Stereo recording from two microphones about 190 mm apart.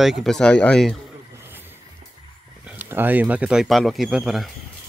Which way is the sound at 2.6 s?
10° right (ahead or behind).